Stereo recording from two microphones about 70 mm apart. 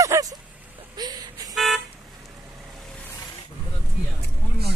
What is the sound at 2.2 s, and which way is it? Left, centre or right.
Vehicle, right.